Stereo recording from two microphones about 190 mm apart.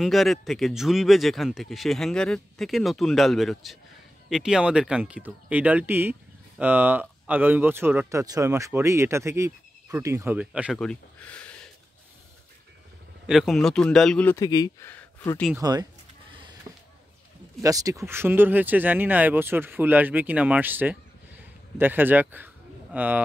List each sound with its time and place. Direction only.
0.0 s speech: centre (ahead or behind)
10.8 s a sound: 5° left (ahead or behind)
13.3 s speech: centre (ahead or behind)
14.4 s speech: 20° left (ahead or behind)
15.5 s a sound: 20° right (ahead or behind)
17.6 s speech: 15° right (ahead or behind)